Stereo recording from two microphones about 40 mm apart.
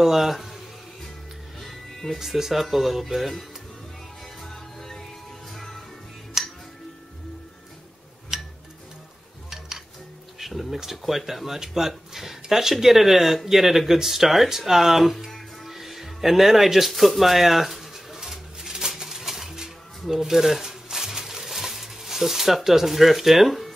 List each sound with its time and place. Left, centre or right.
0.0 s speech: centre
1.6 s music: centre
2.1 s speech: centre
4.4 s music: centre
6.4 s music: centre
8.3 s music: centre
10.4 s speech: centre
12.8 s a sound: centre